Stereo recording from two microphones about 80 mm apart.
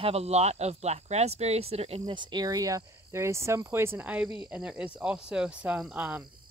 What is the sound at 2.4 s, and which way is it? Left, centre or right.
Speech, right.